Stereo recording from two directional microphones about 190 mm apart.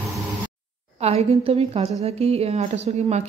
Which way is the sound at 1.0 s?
35° right (ahead or behind).